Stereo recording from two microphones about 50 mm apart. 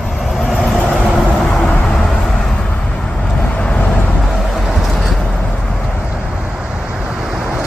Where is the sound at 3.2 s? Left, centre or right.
Left.